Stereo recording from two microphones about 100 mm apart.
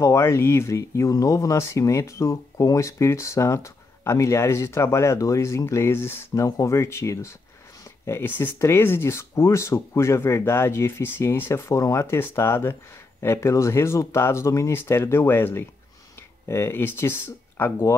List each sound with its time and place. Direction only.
0.0 s speech: 30° left (ahead or behind)